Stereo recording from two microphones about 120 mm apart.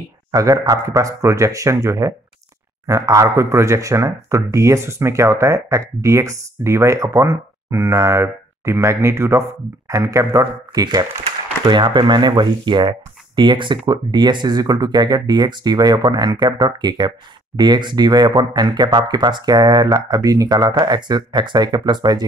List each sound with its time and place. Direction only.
0.3 s speech: 30° right (ahead or behind)